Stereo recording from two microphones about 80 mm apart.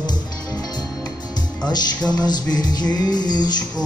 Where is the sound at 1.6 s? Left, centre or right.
Left.